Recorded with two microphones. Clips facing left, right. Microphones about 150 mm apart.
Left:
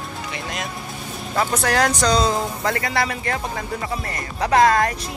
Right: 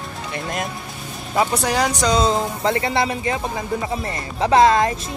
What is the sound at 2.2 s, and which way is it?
Speech, 25° right (ahead or behind).